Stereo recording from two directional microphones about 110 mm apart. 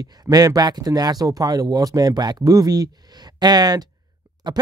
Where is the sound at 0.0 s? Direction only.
35° right (ahead or behind).